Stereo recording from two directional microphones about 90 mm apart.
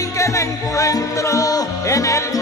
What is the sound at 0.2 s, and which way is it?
Music, 35° left (ahead or behind).